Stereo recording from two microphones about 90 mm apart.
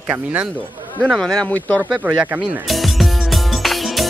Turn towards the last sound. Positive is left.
turn(degrees=0)  # may be behind; listen again after turning